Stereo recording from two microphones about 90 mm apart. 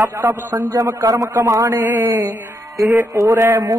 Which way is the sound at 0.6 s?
40° right (ahead or behind).